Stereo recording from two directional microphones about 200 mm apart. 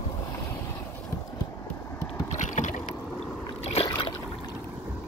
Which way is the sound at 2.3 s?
40° left (ahead or behind).